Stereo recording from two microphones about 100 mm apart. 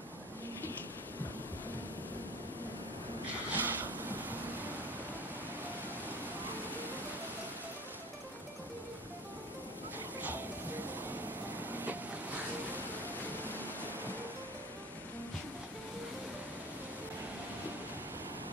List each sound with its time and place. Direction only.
3.5 s a sound: 15° right (ahead or behind)
6.0 s vehicle: 20° right (ahead or behind)
10.2 s music: 20° right (ahead or behind)
11.7 s vehicle: 15° right (ahead or behind)